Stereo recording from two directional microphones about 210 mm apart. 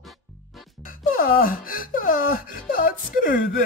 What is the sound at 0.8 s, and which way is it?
Speech, 45° left (ahead or behind).